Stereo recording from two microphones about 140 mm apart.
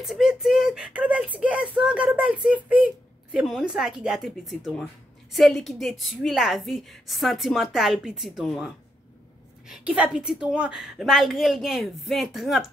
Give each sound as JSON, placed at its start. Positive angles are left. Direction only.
{"t": 0.0, "sound": "speech", "side_deg": -5}